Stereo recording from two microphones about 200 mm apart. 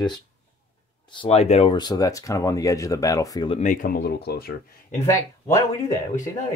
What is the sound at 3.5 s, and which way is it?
Speech, 40° left (ahead or behind).